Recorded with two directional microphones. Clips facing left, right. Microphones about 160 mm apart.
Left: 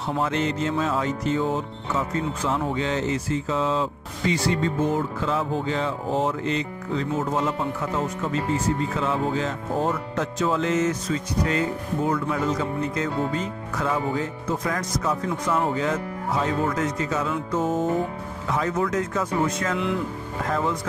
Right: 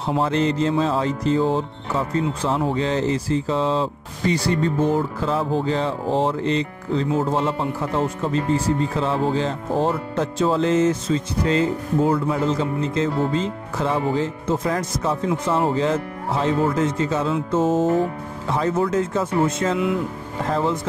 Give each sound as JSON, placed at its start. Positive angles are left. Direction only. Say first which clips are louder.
{"t": 0.2, "sound": "music", "louder": "right 5 dB", "side_deg": -35}
{"t": 15.3, "sound": "speech", "louder": "right 3 dB", "side_deg": -30}